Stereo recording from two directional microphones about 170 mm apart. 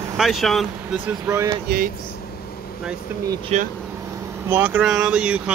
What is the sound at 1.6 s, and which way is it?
Speech, 60° right (ahead or behind).